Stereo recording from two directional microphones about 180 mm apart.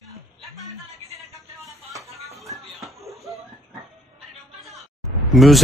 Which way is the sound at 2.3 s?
Centre (ahead or behind).